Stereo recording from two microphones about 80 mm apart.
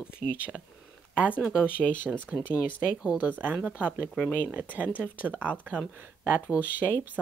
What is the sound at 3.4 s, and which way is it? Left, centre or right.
A woman's voice, centre.